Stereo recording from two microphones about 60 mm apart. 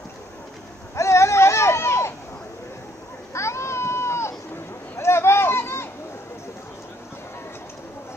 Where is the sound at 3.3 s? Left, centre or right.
Left.